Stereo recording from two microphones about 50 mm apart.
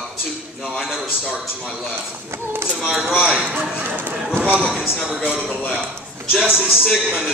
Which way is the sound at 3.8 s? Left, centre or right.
Right.